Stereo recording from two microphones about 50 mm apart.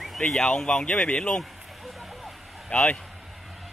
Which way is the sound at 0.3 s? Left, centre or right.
Centre.